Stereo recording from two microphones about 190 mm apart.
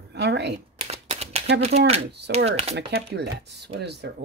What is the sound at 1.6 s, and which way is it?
Speech, 35° right (ahead or behind).